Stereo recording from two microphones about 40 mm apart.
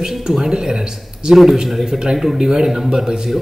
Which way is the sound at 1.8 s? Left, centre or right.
Centre.